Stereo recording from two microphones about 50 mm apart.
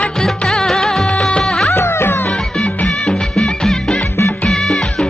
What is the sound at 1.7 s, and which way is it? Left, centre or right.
Music, left.